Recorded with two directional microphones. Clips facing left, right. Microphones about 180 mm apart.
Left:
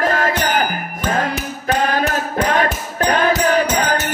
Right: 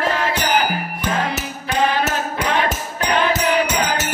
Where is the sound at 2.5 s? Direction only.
45° left (ahead or behind).